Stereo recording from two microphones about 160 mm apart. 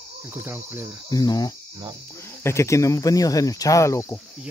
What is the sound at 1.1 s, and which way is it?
Speech, 25° left (ahead or behind).